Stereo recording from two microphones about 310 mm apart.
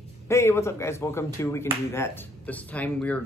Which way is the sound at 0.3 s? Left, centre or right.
Centre.